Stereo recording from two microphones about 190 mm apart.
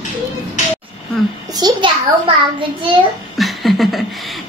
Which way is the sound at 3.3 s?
Centre (ahead or behind).